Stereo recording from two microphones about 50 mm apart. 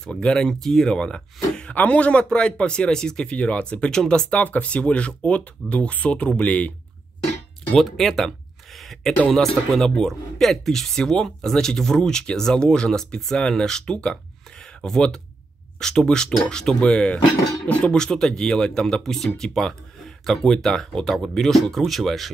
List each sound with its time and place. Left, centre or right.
0.0 s speech: centre
1.7 s speech: left
3.3 s speech: left
7.8 s speech: centre
8.7 s a sound: centre
9.3 s speech: centre; by 17.9 s left
17.9 s speech: centre